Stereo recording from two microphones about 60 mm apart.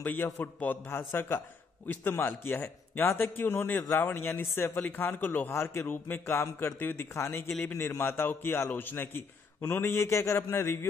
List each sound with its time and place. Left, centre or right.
0.0 s a man's voice: left
5.5 s a man's voice: left
6.2 s a man's voice: left
6.8 s a man's voice: left
7.2 s a man's voice: left
9.8 s a man's voice: left